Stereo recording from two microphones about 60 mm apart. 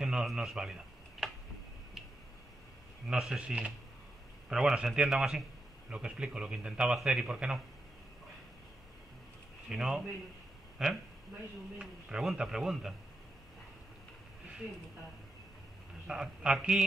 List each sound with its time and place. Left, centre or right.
0.0 s a sound: centre
0.3 s a man's voice: centre
3.1 s a man's voice: centre
3.3 s a man's voice: centre
5.9 s a man's voice: centre
9.7 s a man's voice: centre
16.1 s speech: centre